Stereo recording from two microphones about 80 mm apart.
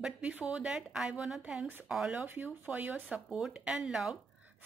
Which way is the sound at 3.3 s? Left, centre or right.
Centre.